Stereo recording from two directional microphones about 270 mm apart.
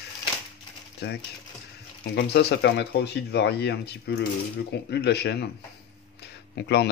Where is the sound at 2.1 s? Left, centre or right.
Left.